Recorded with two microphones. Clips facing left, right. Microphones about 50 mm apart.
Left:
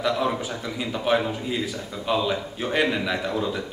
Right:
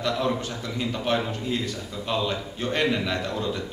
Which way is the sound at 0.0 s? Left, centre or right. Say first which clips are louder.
Left 2 dB; centre.